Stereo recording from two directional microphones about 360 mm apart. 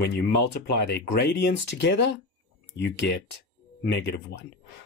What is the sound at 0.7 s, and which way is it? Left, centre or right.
Speech, left.